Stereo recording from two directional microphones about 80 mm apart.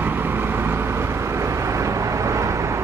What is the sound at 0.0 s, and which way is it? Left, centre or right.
Vehicle, right.